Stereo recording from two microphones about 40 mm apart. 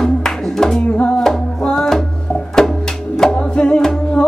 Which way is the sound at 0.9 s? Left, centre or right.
Left.